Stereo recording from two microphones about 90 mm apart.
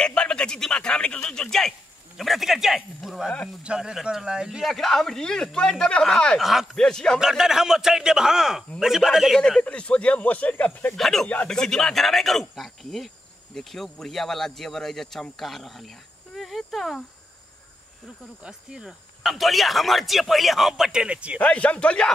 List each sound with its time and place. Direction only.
0.0 s a man's voice: 10° left (ahead or behind)
7.2 s speech: 5° right (ahead or behind)
9.4 s a man's voice: 10° left (ahead or behind)
11.0 s speech: 5° left (ahead or behind)
18.0 s speech: 10° right (ahead or behind)
21.4 s a man's voice: 15° left (ahead or behind)